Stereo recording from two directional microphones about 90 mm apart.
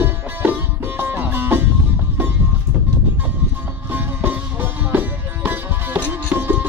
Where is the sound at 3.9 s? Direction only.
20° right (ahead or behind).